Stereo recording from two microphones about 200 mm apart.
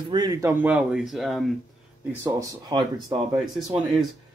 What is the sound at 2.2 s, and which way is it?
Speech, 20° right (ahead or behind).